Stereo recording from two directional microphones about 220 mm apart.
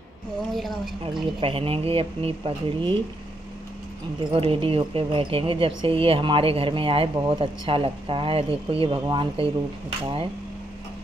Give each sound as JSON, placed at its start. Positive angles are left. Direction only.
{"t": 0.5, "sound": "a woman's voice", "side_deg": 0}
{"t": 1.4, "sound": "speech", "side_deg": -25}
{"t": 4.2, "sound": "speech", "side_deg": -25}